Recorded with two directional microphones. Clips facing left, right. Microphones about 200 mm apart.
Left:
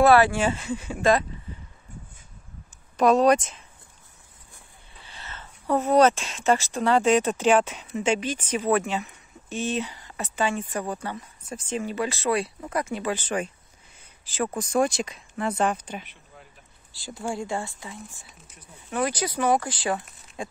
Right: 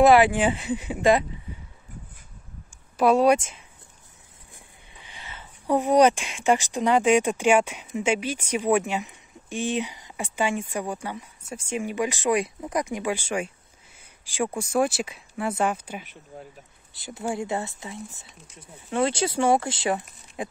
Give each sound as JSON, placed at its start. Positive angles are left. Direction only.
{"t": 0.0, "sound": "speech", "side_deg": -15}
{"t": 3.0, "sound": "speech", "side_deg": -10}
{"t": 4.9, "sound": "speech", "side_deg": -15}
{"t": 16.3, "sound": "a sound", "side_deg": -45}
{"t": 16.9, "sound": "speech", "side_deg": -20}
{"t": 20.4, "sound": "a sound", "side_deg": -20}